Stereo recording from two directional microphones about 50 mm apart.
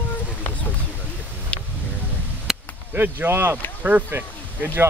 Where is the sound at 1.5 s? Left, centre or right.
Left.